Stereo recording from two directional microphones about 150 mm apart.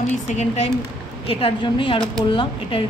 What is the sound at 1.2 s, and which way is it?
A woman's voice, 35° left (ahead or behind).